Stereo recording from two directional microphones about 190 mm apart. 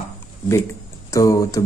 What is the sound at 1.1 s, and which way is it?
Speech, 15° left (ahead or behind).